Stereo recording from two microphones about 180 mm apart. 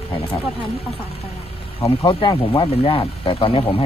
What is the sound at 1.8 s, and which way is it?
Speech, 25° left (ahead or behind).